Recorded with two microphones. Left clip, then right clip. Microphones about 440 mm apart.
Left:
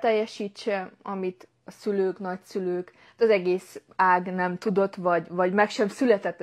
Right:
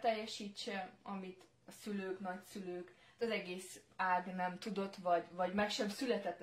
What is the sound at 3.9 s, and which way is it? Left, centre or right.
Speech, left.